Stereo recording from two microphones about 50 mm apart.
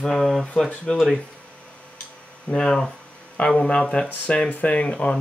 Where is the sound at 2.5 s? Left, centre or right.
Centre.